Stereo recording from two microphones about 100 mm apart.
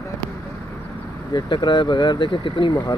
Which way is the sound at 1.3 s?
45° left (ahead or behind).